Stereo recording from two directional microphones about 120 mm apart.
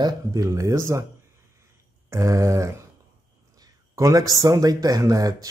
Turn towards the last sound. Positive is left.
turn(degrees=-30)  # may be behind; listen again after turning